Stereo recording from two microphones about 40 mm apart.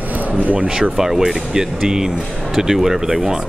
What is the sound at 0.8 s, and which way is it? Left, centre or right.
Speech, centre.